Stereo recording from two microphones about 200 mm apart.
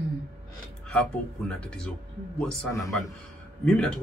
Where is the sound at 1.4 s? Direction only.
5° left (ahead or behind).